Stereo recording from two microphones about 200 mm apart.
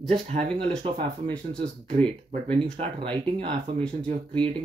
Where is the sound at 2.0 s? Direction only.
30° right (ahead or behind).